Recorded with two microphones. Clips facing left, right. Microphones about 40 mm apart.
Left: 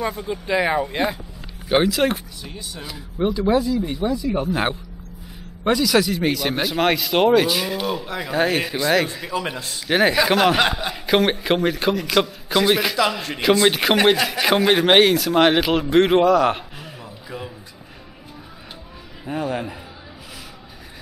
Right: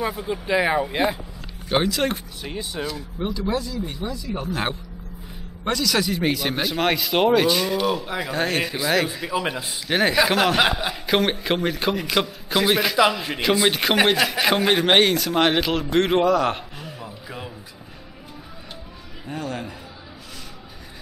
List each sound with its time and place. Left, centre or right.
0.0 s a man's voice: centre
1.7 s speech: centre
2.4 s speech: right
2.9 s a man's voice: centre
17.0 s a sound: centre
19.2 s speech: centre